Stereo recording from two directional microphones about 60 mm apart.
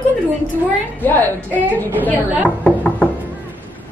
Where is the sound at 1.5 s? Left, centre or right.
Right.